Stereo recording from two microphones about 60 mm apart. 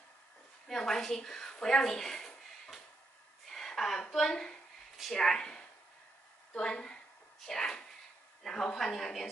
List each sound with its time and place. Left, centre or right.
0.7 s speech: centre
3.4 s a sound: centre
4.1 s a woman's voice: centre